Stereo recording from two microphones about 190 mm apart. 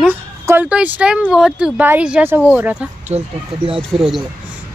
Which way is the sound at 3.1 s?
30° right (ahead or behind).